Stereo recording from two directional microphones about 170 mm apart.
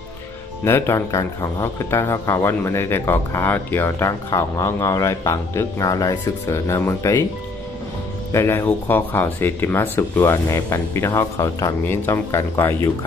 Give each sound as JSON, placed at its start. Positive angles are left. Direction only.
{"t": 0.7, "sound": "speech", "side_deg": 15}
{"t": 8.3, "sound": "speech", "side_deg": 15}